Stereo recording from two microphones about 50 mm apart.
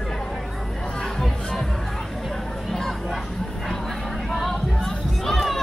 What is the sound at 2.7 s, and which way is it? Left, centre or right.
Crowd, centre.